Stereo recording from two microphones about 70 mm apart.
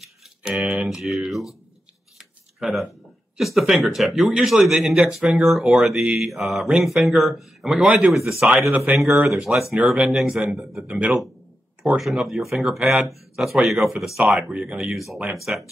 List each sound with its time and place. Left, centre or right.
0.0 s a sound: centre
0.8 s speech: centre
10.8 s speech: centre
12.0 s speech: centre